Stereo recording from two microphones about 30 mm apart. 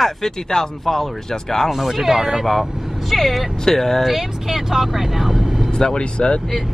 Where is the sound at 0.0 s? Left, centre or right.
Centre.